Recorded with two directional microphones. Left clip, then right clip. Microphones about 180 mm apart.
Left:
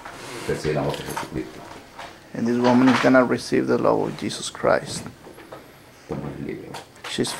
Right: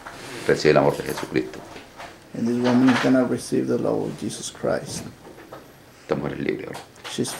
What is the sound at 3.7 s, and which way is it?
Speech, 20° right (ahead or behind).